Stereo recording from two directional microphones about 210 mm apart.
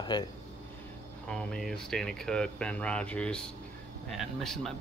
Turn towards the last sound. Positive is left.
turn(degrees=0)  # may be behind; listen again after turning